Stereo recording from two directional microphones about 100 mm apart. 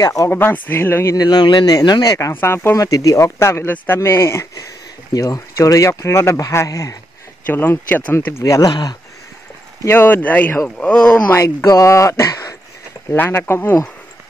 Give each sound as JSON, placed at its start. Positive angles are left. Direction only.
{"t": 0.0, "sound": "speech", "side_deg": 35}
{"t": 0.3, "sound": "speech", "side_deg": 20}
{"t": 1.1, "sound": "speech", "side_deg": 45}
{"t": 2.4, "sound": "speech", "side_deg": 25}
{"t": 7.4, "sound": "speech", "side_deg": 20}
{"t": 8.3, "sound": "speech", "side_deg": 30}
{"t": 9.8, "sound": "speech", "side_deg": 20}
{"t": 11.3, "sound": "speech", "side_deg": 30}
{"t": 13.1, "sound": "speech", "side_deg": 20}